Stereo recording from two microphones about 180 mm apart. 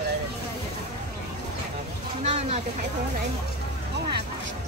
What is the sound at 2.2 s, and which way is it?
Speech, 35° right (ahead or behind).